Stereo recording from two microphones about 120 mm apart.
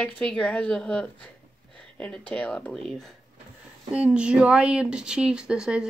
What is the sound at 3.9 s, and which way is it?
Speech, 10° right (ahead or behind).